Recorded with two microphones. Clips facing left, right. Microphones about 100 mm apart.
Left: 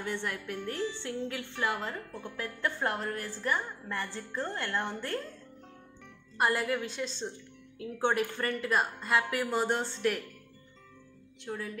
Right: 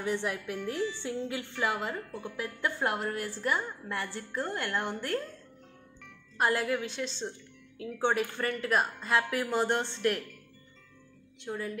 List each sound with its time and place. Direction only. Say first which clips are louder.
0.0 s a woman's voice: right 3 dB; 15° right (ahead or behind)
6.3 s a woman's voice: right 1 dB; centre (ahead or behind)
11.4 s a woman's voice: right 2 dB; centre (ahead or behind)